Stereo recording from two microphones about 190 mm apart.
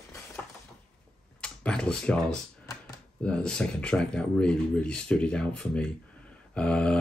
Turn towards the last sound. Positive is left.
turn(degrees=5)  # may be behind; listen again after turning